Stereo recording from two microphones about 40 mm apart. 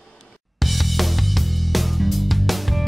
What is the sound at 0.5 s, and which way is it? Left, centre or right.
Music, centre.